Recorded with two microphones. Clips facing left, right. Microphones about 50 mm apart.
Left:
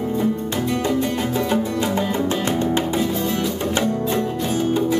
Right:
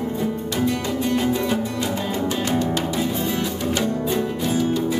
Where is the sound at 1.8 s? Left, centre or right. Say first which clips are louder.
Left 3 dB; left.